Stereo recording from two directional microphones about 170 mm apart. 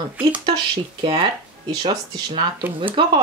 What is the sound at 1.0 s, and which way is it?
Speech, 30° right (ahead or behind).